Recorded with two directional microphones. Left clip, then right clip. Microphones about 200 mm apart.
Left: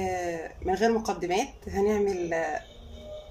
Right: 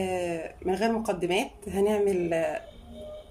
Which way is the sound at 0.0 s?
10° right (ahead or behind).